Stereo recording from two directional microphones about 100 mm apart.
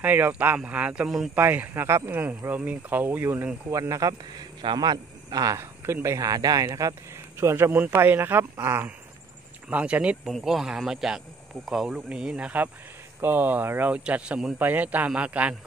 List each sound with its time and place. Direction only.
0.0 s speech: 15° right (ahead or behind)
1.0 s speech: centre (ahead or behind)
1.3 s a man's voice: 20° right (ahead or behind)
3.7 s speech: 35° right (ahead or behind)
4.6 s a man's voice: 50° right (ahead or behind); by 10.1 s 15° right (ahead or behind)
10.2 s speech: centre (ahead or behind)